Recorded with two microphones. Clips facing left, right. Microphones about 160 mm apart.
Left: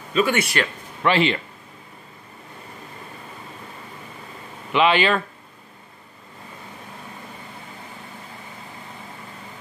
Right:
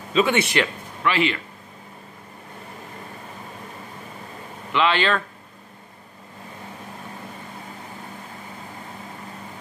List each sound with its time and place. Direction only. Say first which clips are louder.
0.1 s a man's voice: right 1 dB; 20° right (ahead or behind)
1.0 s speech: left 3 dB; 30° left (ahead or behind)
4.7 s speech: left 2 dB; 15° left (ahead or behind)